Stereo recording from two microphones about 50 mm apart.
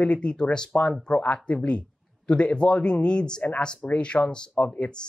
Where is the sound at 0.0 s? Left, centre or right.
Left.